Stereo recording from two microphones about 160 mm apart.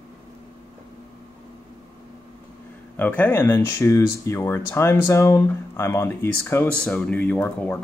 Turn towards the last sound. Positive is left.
turn(degrees=10)  # may be behind; listen again after turning